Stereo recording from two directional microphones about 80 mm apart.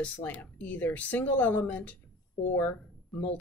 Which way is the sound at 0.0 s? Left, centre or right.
Centre.